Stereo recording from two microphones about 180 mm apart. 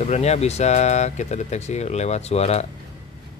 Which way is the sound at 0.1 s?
35° left (ahead or behind).